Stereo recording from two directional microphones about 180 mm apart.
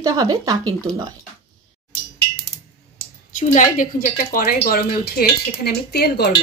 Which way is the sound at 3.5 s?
45° left (ahead or behind).